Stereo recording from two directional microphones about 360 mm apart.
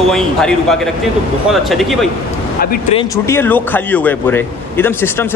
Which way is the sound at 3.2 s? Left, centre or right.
Centre.